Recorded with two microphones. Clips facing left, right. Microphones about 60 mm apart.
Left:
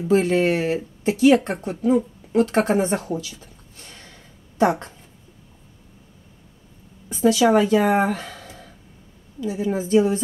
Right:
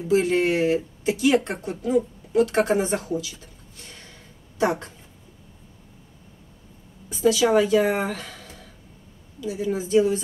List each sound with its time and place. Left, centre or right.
0.1 s a woman's voice: left
7.1 s a woman's voice: left